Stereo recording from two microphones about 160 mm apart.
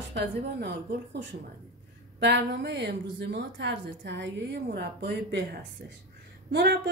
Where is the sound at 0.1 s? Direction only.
90° right.